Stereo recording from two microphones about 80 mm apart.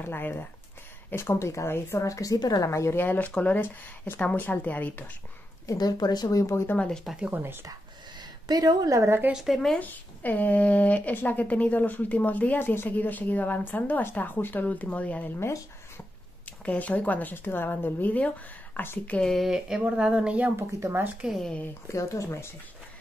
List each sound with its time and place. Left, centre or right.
0.0 s a woman's voice: left
2.7 s speech: left
5.7 s speech: left
7.2 s speech: centre
8.2 s a woman's voice: right
9.3 s speech: centre
9.8 s speech: left
15.3 s a woman's voice: left
16.6 s speech: centre
19.1 s speech: centre
20.5 s speech: right
21.8 s a woman's voice: left